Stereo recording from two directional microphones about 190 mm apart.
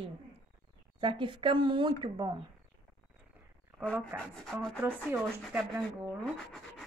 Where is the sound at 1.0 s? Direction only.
25° right (ahead or behind).